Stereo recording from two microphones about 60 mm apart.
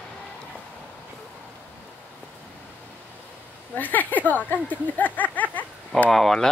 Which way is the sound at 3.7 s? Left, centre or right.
Left.